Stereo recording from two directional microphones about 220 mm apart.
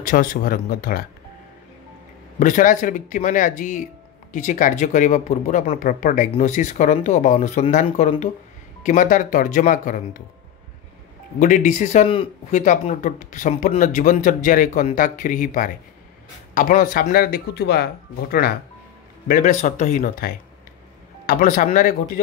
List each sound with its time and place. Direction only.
0.0 s speech: 40° left (ahead or behind)
2.3 s speech: 35° left (ahead or behind)
11.3 s speech: 35° left (ahead or behind)
19.2 s speech: 35° left (ahead or behind)